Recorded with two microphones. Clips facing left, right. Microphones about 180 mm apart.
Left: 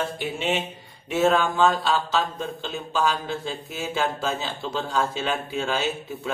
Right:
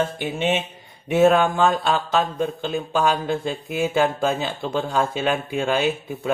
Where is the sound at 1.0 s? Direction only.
55° right (ahead or behind).